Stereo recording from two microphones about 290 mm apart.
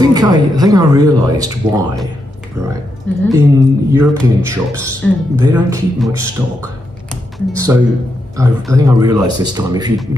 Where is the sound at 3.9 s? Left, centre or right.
Centre.